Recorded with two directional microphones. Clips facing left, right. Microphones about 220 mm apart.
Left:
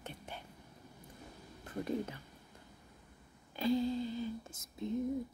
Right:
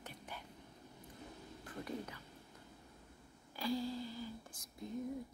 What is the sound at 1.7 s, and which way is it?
Speech, 25° left (ahead or behind).